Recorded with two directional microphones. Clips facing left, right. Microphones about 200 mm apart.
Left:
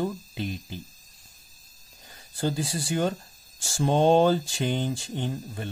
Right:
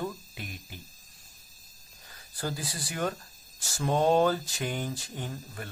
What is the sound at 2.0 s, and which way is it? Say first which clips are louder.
Speech: left 7 dB; 25° left (ahead or behind).